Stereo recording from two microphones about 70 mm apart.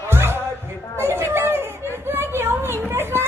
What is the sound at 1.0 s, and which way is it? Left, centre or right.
Chatter, right.